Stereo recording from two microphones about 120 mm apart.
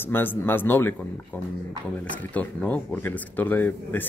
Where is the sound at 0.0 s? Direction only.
15° left (ahead or behind).